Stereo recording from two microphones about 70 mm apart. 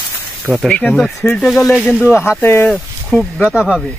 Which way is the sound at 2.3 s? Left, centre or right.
Left.